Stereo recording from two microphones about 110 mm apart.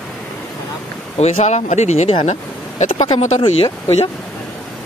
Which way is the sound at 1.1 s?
75° left (ahead or behind).